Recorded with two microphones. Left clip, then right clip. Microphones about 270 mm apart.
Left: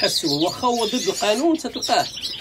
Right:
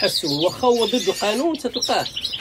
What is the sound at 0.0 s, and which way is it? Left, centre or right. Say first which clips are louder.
Speech: even; centre.